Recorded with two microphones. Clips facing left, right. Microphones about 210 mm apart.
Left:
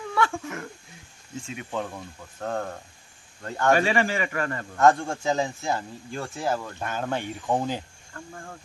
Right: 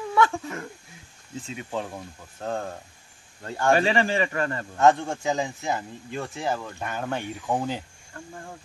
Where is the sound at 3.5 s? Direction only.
30° right (ahead or behind); by 7.2 s 10° right (ahead or behind).